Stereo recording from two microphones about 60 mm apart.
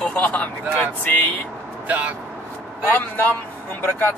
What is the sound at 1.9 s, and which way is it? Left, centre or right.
Speech, right.